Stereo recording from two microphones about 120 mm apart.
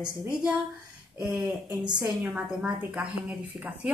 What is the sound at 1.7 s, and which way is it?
Speech, 35° right (ahead or behind).